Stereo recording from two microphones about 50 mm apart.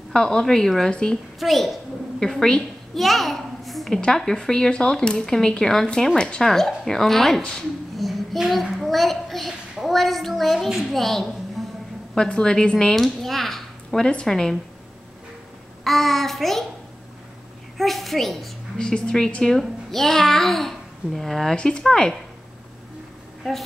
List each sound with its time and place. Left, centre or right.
0.1 s a child's voice: centre
1.4 s a woman's voice: centre
2.4 s a woman's voice: centre
3.0 s a child's voice: centre
7.5 s a sound: centre
8.7 s a child's voice: centre
11.6 s a sound: centre
12.2 s a child's voice: centre
12.9 s a sound: centre
14.2 s a child's voice: centre
15.8 s speech: centre
17.7 s speech: centre
18.8 s a child's voice: centre